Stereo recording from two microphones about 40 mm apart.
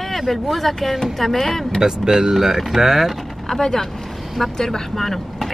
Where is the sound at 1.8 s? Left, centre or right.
Centre.